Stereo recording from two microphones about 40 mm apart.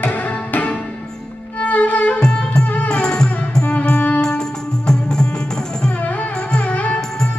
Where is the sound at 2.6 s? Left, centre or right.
Left.